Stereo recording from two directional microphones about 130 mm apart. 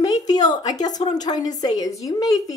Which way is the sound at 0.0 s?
30° left (ahead or behind).